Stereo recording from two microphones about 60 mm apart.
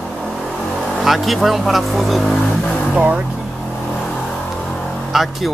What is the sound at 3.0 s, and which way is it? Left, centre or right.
Speech, right.